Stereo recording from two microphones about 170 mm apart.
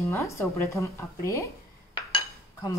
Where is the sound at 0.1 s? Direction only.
15° left (ahead or behind).